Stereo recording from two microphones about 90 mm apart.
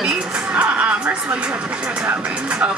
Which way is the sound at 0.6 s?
15° right (ahead or behind).